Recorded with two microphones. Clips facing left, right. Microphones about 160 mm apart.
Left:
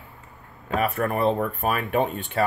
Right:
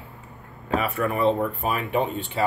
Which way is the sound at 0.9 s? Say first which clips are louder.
Right 2 dB; 50° left (ahead or behind).